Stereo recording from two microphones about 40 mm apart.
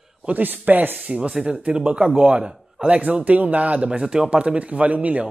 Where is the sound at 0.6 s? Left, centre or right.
Right.